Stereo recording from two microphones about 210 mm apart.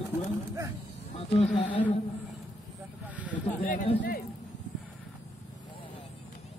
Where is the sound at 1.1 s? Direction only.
30° left (ahead or behind).